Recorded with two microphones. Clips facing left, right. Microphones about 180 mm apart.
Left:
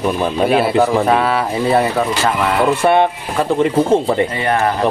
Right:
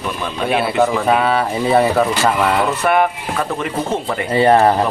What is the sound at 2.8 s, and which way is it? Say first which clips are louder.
Speech: left 2 dB; 25° left (ahead or behind).